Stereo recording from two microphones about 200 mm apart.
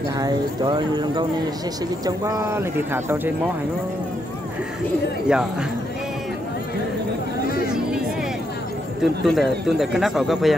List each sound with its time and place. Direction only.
0.2 s speech: 20° right (ahead or behind)
5.3 s a man's voice: 5° right (ahead or behind)
9.0 s a man's voice: centre (ahead or behind)